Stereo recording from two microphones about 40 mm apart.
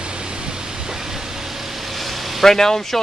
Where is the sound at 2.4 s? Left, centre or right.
Centre.